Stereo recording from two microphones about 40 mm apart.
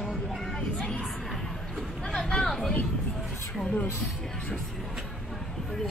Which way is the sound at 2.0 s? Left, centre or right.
Centre.